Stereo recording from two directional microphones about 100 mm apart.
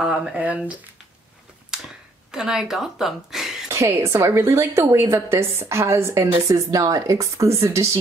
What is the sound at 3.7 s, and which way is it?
A woman's voice, 25° right (ahead or behind).